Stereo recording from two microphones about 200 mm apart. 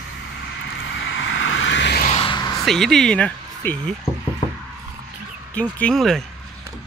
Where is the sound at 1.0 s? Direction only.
70° left (ahead or behind).